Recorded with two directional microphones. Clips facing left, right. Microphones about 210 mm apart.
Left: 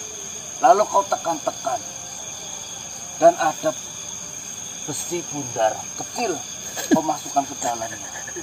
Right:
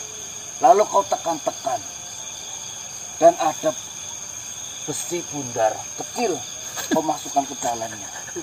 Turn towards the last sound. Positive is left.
turn(degrees=-5)  # may be behind; listen again after turning